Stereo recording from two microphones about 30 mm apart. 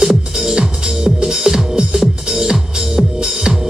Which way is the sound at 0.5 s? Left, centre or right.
Right.